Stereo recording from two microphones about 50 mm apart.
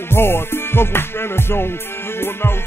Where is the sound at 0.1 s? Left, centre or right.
Left.